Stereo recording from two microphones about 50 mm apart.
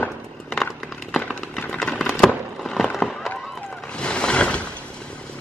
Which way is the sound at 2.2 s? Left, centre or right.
Centre.